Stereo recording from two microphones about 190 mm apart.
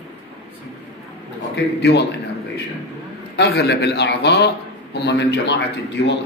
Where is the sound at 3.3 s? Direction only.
60° left (ahead or behind).